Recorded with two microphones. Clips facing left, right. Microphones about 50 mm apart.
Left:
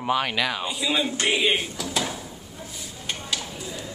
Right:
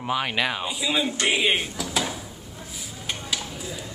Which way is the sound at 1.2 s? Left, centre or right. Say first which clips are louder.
Right 1 dB; centre.